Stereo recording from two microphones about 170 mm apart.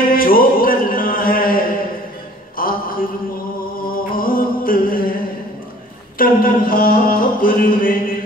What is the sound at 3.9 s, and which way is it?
Music, 55° left (ahead or behind).